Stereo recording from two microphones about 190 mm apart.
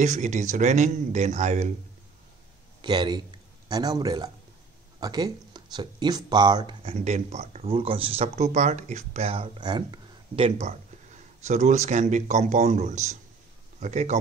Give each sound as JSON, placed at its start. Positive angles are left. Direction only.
{"t": 0.0, "sound": "a man's voice", "side_deg": -40}
{"t": 2.8, "sound": "a man's voice", "side_deg": -25}